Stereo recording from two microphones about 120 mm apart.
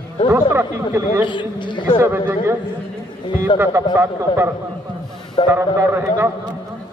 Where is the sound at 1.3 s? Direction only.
40° left (ahead or behind).